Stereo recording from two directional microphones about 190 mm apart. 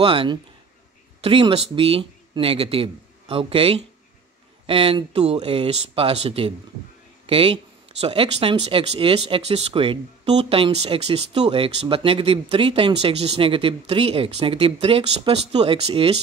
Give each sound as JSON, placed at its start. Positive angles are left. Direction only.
{"t": 0.0, "sound": "speech", "side_deg": -25}